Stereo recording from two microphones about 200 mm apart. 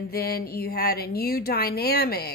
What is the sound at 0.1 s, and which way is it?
A woman's voice, 50° left (ahead or behind).